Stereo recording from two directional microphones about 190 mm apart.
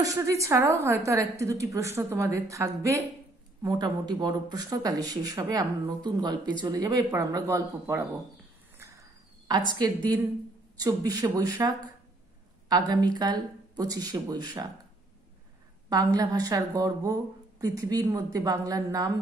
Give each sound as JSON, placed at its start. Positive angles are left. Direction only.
{"t": 0.0, "sound": "a woman's voice", "side_deg": -15}
{"t": 9.8, "sound": "speech", "side_deg": -20}
{"t": 12.6, "sound": "speech", "side_deg": -20}
{"t": 15.9, "sound": "speech", "side_deg": -20}